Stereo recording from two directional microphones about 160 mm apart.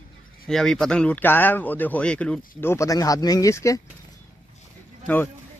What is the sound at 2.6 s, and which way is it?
Speech, 15° left (ahead or behind).